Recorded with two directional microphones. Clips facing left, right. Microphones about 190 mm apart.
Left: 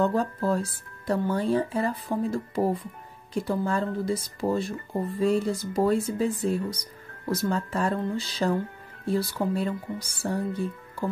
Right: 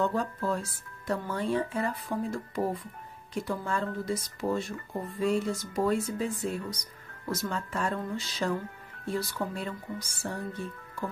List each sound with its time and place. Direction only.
0.0 s speech: 35° left (ahead or behind)